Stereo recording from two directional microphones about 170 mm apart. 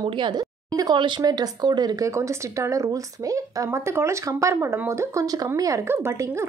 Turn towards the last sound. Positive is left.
turn(degrees=-15)  # may be behind; listen again after turning